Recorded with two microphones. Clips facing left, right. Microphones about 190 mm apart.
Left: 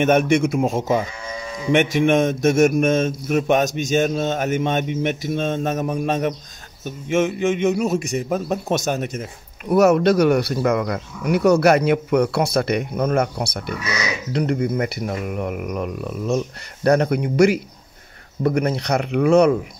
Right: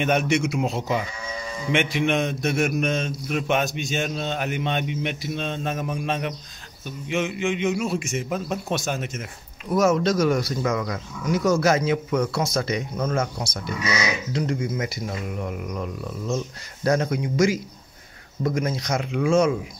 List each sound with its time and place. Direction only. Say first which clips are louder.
0.0 s a man's voice: left 6 dB; 50° left (ahead or behind)
9.7 s speech: left 5 dB; 60° left (ahead or behind)